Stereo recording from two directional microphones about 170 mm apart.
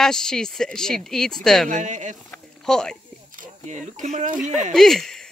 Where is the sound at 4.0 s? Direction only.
45° right (ahead or behind).